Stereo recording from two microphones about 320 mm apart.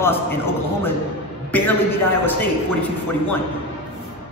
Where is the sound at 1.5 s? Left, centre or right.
Centre.